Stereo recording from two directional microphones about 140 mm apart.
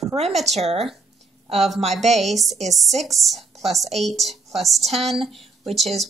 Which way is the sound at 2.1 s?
Centre (ahead or behind).